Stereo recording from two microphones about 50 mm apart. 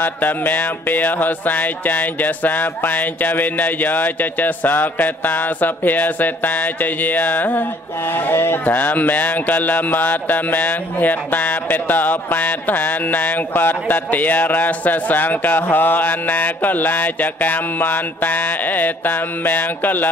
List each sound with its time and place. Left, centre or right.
0.0 s speech: left
8.6 s speech: left